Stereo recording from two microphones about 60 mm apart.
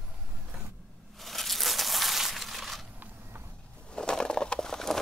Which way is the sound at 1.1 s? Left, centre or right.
Centre.